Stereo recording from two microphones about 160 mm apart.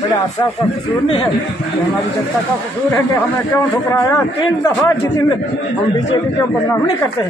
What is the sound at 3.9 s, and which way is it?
Speech, 15° left (ahead or behind).